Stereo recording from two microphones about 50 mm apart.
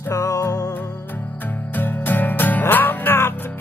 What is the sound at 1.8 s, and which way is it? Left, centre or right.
Music, left.